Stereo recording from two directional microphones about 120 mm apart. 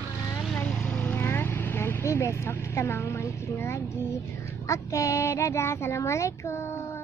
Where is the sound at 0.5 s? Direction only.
10° left (ahead or behind).